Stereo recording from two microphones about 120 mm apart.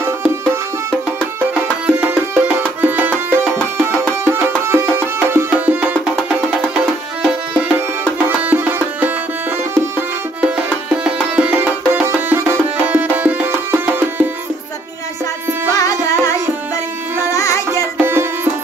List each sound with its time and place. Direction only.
1.5 s music: 10° right (ahead or behind)
7.5 s music: 10° right (ahead or behind)
15.7 s music: 30° left (ahead or behind)
17.3 s music: 25° left (ahead or behind)
17.9 s music: 20° right (ahead or behind)